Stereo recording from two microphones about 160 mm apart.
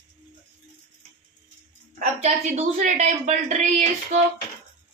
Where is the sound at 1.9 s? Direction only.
50° right (ahead or behind).